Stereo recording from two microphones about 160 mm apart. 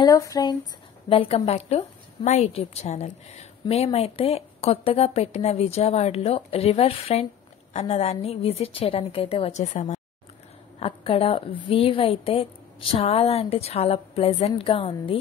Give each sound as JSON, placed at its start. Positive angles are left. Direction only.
{"t": 0.0, "sound": "speech", "side_deg": 20}
{"t": 1.0, "sound": "a woman's voice", "side_deg": 35}